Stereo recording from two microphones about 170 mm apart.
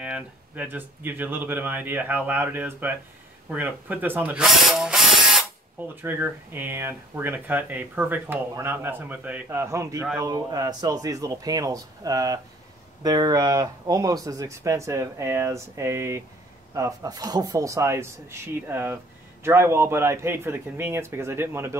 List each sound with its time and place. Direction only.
0.0 s a man's voice: 10° right (ahead or behind)